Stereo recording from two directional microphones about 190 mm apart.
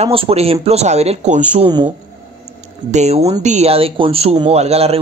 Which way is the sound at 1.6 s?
25° right (ahead or behind).